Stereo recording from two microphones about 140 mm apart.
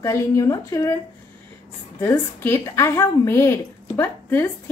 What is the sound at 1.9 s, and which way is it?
A woman's voice, 20° left (ahead or behind).